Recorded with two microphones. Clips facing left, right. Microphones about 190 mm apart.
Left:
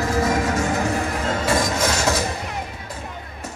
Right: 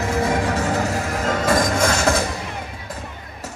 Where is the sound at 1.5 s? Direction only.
50° right (ahead or behind).